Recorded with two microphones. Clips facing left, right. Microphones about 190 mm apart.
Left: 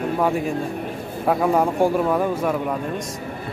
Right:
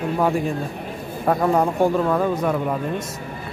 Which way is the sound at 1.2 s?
5° left (ahead or behind).